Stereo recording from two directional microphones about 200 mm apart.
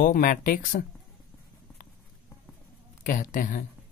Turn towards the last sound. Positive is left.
turn(degrees=40)  # may be behind; listen again after turning